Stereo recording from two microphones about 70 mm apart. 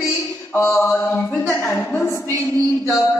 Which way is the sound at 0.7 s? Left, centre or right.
Left.